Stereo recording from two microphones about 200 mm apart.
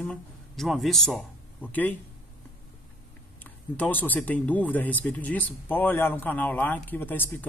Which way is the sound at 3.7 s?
10° left (ahead or behind).